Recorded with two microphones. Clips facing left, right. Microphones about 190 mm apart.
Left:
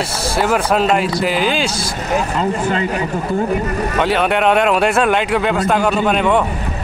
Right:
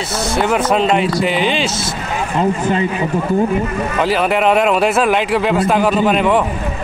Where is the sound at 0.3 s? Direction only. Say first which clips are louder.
Right 1 dB; centre (ahead or behind).